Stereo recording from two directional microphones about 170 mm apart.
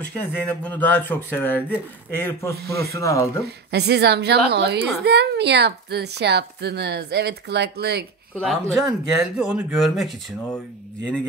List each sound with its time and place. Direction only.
0.2 s speech: 10° left (ahead or behind)
2.5 s a woman's voice: 70° right (ahead or behind)
2.9 s speech: 20° left (ahead or behind)
3.4 s a woman's voice: 75° right (ahead or behind)
8.4 s speech: centre (ahead or behind)